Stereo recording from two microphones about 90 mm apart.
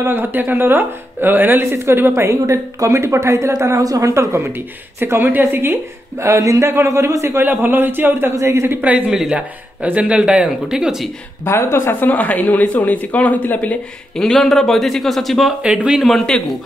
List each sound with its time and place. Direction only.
0.0 s speech: 25° right (ahead or behind)
6.2 s a man's voice: 35° right (ahead or behind)
8.8 s speech: 15° right (ahead or behind)
11.4 s speech: 25° left (ahead or behind)
14.1 s speech: 5° left (ahead or behind)
15.6 s speech: 10° right (ahead or behind)
16.0 s speech: 5° left (ahead or behind)